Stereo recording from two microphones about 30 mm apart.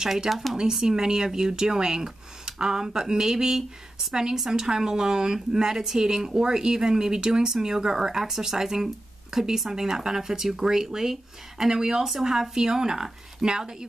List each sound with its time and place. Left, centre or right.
0.0 s a woman's voice: centre
0.3 s speech: centre
0.7 s a woman's voice: centre